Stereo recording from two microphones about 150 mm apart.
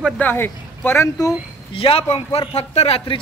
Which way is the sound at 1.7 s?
40° left (ahead or behind).